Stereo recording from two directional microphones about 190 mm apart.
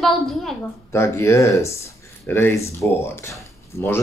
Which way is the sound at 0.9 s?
15° left (ahead or behind).